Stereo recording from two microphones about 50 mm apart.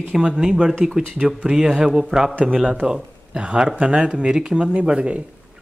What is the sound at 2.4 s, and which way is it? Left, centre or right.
Speech, centre.